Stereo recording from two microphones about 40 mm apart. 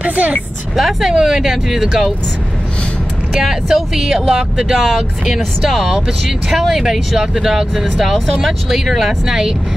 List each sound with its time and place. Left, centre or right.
0.0 s a woman's voice: right
0.7 s speech: centre
3.3 s speech: centre